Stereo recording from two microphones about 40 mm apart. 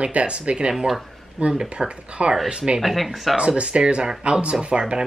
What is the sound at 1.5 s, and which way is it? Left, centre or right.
Speech, centre.